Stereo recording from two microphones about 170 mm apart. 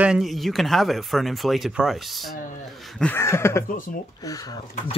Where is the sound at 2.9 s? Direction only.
10° left (ahead or behind).